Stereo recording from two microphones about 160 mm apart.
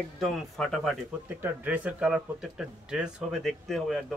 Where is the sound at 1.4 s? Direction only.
10° right (ahead or behind).